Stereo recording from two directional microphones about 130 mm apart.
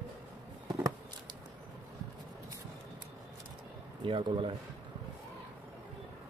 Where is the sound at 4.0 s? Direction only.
40° right (ahead or behind).